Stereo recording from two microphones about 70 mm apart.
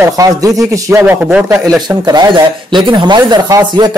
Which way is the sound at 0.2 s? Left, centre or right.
Right.